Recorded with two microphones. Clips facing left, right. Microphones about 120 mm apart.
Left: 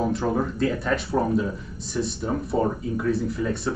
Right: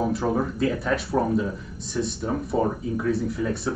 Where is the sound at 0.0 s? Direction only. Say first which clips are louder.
Even; 5° right (ahead or behind).